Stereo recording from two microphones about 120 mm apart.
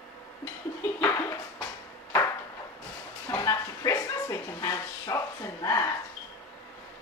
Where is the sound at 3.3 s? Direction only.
30° left (ahead or behind).